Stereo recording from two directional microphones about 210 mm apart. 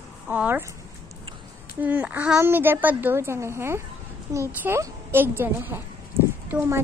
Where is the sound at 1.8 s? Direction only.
5° right (ahead or behind).